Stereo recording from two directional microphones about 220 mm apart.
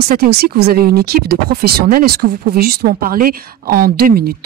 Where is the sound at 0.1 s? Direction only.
45° right (ahead or behind).